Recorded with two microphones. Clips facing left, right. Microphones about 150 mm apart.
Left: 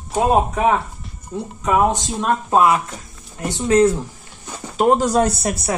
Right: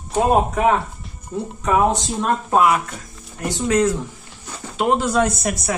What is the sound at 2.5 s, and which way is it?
Speech, 30° left (ahead or behind).